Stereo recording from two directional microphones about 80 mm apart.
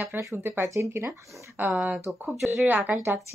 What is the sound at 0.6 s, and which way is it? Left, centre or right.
Speech, right.